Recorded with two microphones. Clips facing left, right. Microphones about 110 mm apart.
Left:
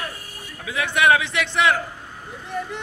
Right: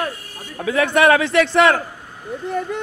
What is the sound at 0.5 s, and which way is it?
A man's voice, 50° right (ahead or behind).